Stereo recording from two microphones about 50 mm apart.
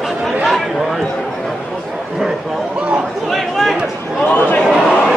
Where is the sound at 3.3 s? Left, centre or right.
Centre.